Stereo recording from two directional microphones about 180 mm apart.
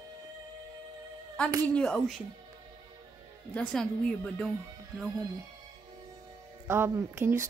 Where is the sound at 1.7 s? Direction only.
5° left (ahead or behind).